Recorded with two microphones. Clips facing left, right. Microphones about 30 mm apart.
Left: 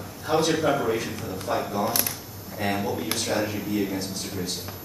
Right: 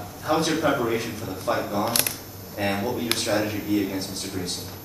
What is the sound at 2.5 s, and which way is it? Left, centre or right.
Speech, right.